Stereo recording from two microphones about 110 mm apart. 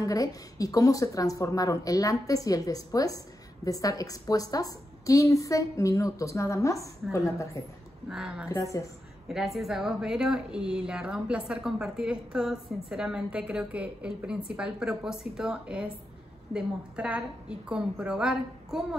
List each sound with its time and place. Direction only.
0.0 s a woman's voice: 30° left (ahead or behind)
8.1 s a woman's voice: 5° right (ahead or behind)